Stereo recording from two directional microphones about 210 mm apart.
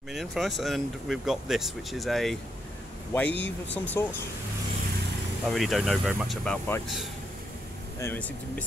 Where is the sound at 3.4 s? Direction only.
10° left (ahead or behind).